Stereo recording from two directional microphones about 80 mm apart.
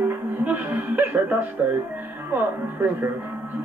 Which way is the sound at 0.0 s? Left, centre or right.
Right.